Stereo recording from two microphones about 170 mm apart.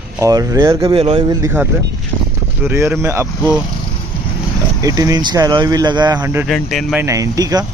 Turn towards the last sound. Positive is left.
turn(degrees=-20)  # may be behind; listen again after turning